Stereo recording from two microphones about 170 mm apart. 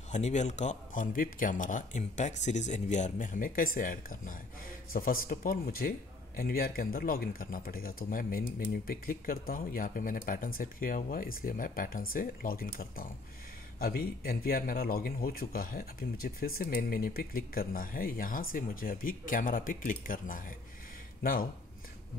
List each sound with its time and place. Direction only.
0.1 s speech: 45° left (ahead or behind); by 21.5 s 60° left (ahead or behind)